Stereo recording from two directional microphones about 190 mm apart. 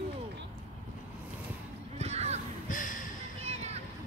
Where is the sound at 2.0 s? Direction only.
35° right (ahead or behind).